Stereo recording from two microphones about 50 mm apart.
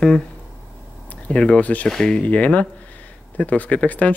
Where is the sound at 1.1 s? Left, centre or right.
Left.